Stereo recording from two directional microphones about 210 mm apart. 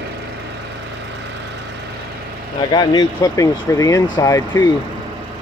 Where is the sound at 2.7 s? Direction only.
20° left (ahead or behind).